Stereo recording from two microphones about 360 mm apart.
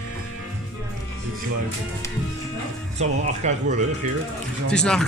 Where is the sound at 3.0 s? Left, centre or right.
Centre.